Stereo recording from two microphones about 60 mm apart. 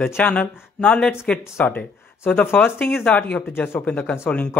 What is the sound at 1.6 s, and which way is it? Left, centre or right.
A man's voice, left.